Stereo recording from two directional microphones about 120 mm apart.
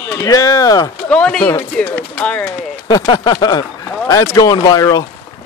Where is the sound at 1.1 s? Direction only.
10° left (ahead or behind).